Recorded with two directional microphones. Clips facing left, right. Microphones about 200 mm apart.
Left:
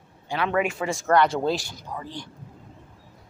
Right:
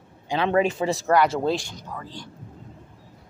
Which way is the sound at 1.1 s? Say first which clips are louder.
Left 1 dB; 5° right (ahead or behind).